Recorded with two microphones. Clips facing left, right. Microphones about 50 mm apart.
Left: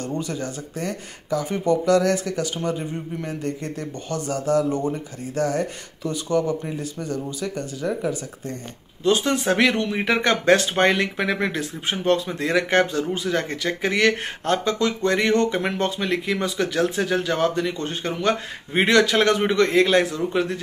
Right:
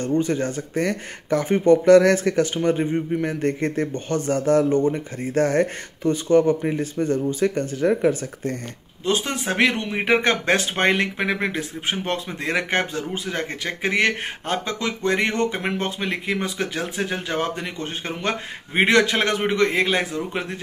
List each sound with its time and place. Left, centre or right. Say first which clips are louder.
0.2 s speech: right 6 dB; right
9.0 s a man's voice: left 3 dB; right